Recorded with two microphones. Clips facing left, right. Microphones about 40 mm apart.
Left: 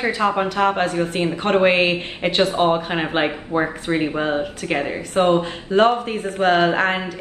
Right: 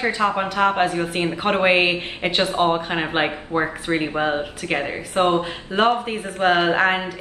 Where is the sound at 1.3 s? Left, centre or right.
Centre.